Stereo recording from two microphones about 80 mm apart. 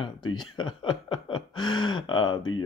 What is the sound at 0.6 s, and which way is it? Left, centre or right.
Speech, left.